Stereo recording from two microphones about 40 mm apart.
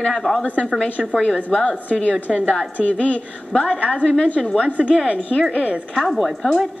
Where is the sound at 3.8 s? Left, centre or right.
Left.